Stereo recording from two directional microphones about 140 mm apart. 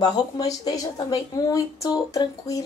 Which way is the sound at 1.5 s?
25° left (ahead or behind).